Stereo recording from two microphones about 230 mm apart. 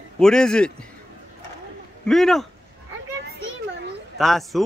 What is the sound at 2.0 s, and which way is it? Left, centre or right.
Speech, centre.